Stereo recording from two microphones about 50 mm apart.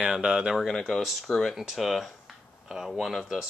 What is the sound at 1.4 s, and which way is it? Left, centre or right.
Speech, centre.